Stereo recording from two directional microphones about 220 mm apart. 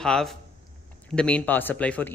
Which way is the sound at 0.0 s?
Centre (ahead or behind).